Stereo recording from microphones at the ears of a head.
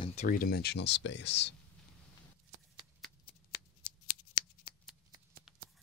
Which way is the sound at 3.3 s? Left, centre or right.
Left.